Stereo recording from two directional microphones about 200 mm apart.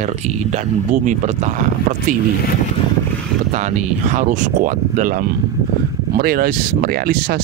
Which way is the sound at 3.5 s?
35° right (ahead or behind).